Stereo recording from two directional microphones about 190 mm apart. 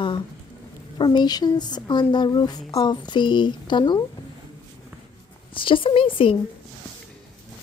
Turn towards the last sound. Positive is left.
turn(degrees=30)  # may be behind; listen again after turning